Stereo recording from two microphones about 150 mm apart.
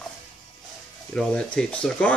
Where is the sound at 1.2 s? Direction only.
5° left (ahead or behind).